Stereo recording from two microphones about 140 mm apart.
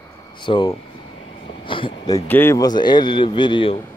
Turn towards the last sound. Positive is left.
turn(degrees=35)  # may be behind; listen again after turning